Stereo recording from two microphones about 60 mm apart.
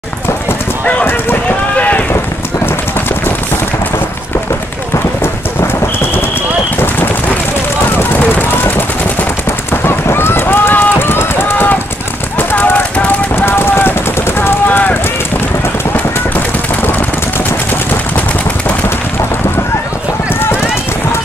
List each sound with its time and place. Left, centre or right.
1.8 s run: left
8.0 s gunshot: left
9.7 s run: left
12.4 s a sound: left
13.4 s a sound: left
14.7 s run: left